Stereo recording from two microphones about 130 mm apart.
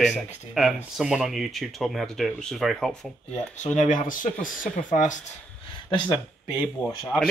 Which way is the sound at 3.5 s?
70° left (ahead or behind).